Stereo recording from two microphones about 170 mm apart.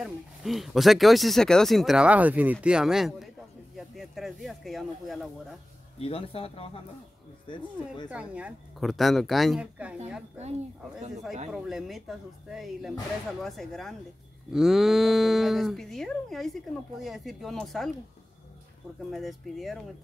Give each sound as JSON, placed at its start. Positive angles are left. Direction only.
{"t": 0.0, "sound": "speech", "side_deg": 0}
{"t": 5.9, "sound": "speech", "side_deg": 35}
{"t": 8.1, "sound": "speech", "side_deg": -10}
{"t": 11.5, "sound": "speech", "side_deg": 0}
{"t": 19.0, "sound": "speech", "side_deg": 0}